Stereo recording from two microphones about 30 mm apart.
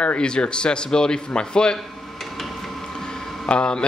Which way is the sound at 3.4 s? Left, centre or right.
Left.